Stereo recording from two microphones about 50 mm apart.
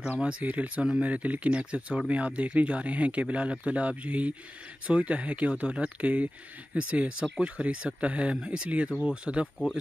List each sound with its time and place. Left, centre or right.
0.4 s speech: right